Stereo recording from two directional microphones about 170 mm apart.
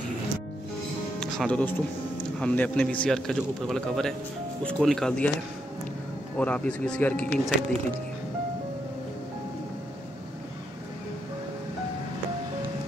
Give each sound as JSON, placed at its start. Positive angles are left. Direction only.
{"t": 1.2, "sound": "speech", "side_deg": 5}
{"t": 6.3, "sound": "speech", "side_deg": 10}